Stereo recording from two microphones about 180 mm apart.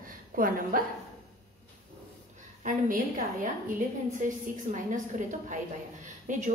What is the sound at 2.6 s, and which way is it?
Speech, 50° right (ahead or behind).